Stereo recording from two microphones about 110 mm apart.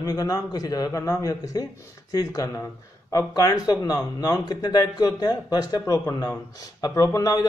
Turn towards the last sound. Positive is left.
turn(degrees=35)  # may be behind; listen again after turning